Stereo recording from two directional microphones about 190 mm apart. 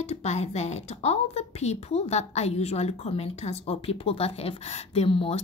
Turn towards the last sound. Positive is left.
turn(degrees=30)  # may be behind; listen again after turning